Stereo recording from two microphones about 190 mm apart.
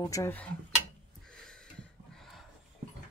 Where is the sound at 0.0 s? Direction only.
15° left (ahead or behind).